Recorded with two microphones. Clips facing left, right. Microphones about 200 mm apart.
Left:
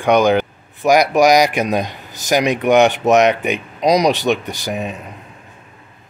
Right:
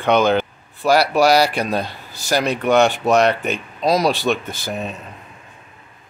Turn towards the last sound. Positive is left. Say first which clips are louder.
# left 3 dB
turn(degrees=15)  # may be behind; listen again after turning